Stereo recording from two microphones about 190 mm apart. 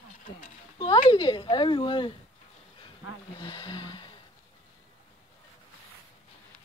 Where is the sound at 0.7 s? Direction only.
25° left (ahead or behind).